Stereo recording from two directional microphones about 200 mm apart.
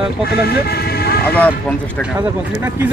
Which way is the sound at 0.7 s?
50° left (ahead or behind).